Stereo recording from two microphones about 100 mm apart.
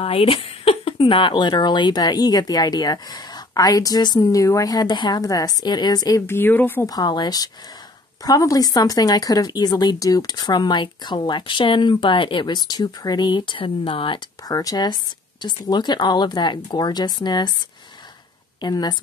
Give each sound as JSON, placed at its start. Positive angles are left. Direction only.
{"t": 0.0, "sound": "speech", "side_deg": 70}
{"t": 6.2, "sound": "a woman's voice", "side_deg": 20}
{"t": 6.9, "sound": "speech", "side_deg": 45}
{"t": 14.5, "sound": "speech", "side_deg": 35}
{"t": 18.6, "sound": "speech", "side_deg": 45}